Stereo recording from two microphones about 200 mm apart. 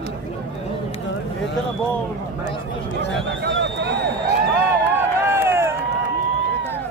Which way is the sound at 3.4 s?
60° right (ahead or behind).